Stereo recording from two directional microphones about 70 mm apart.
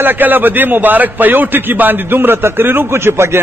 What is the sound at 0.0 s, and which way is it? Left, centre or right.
A man's voice, right.